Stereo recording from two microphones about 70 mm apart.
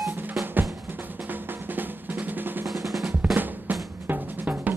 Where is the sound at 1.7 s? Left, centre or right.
Right.